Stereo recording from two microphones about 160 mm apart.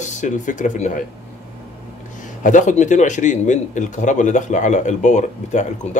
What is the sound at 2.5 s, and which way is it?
Speech, 50° left (ahead or behind).